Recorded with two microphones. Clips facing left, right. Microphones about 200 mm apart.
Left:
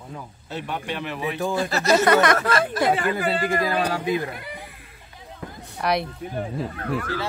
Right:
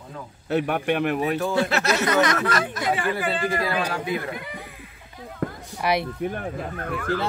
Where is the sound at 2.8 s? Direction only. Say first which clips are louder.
Left 3 dB; 45° left (ahead or behind).